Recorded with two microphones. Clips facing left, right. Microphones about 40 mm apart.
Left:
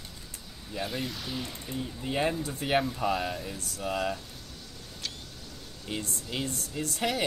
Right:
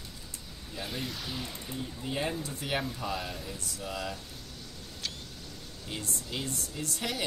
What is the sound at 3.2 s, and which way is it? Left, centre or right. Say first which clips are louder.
Speech: left 5 dB; centre.